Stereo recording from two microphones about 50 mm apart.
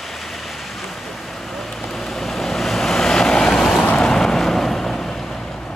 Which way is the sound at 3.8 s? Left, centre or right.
Left.